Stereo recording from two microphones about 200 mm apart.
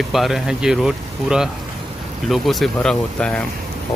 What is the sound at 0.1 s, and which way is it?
Speech, centre (ahead or behind).